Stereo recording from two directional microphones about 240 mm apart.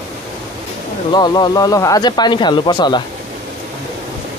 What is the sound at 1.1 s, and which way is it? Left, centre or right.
Speech, centre.